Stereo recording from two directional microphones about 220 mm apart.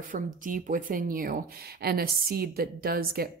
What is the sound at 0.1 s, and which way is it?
Speech, 35° right (ahead or behind).